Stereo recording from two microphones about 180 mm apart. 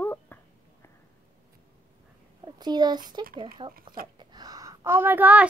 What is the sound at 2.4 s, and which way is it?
A child's voice, 25° right (ahead or behind).